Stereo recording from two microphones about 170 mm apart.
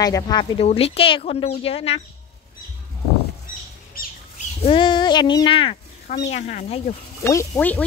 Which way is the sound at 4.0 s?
60° left (ahead or behind).